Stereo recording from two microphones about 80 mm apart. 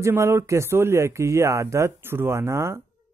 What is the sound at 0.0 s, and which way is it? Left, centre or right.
Speech, right.